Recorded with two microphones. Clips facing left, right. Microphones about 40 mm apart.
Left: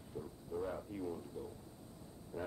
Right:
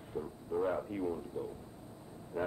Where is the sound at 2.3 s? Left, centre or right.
Right.